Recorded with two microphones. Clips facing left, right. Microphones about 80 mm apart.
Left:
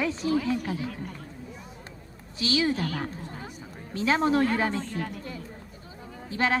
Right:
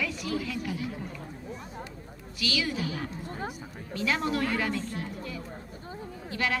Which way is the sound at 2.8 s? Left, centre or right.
Left.